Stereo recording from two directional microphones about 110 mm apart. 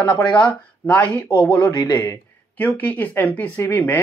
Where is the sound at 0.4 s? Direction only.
10° left (ahead or behind).